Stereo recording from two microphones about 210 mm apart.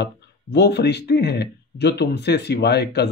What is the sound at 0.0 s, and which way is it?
Speech, 55° left (ahead or behind).